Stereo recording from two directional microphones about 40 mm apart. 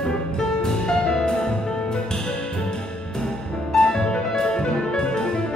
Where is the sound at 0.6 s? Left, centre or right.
Centre.